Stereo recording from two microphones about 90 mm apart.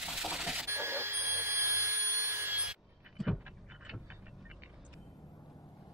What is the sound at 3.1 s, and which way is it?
Pant, centre (ahead or behind).